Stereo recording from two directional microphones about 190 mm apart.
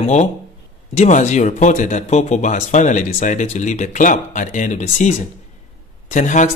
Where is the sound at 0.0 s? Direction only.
40° left (ahead or behind).